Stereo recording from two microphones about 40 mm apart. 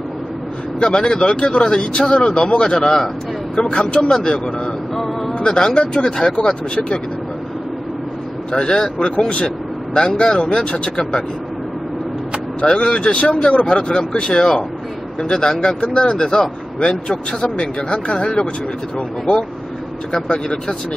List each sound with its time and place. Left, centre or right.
0.7 s speech: left
4.9 s a sound: centre
5.4 s speech: centre
6.3 s speech: left
8.5 s speech: centre
12.5 s speech: left
20.1 s speech: left